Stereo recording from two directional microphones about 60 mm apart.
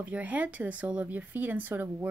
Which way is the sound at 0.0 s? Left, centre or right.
Right.